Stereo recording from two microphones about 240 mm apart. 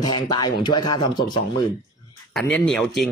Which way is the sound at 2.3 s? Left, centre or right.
Centre.